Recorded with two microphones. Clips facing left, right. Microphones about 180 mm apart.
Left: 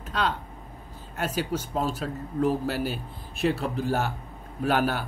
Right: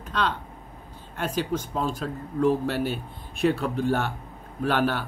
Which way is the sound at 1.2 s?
10° left (ahead or behind).